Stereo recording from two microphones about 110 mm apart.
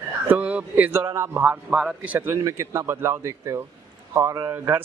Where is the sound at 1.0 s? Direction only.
25° right (ahead or behind).